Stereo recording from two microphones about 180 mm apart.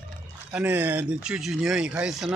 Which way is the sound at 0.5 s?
10° right (ahead or behind).